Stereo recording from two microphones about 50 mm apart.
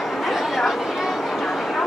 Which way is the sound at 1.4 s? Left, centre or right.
Centre.